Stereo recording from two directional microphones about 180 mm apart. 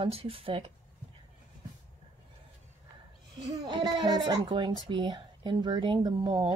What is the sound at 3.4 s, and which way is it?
A woman's voice, 20° right (ahead or behind).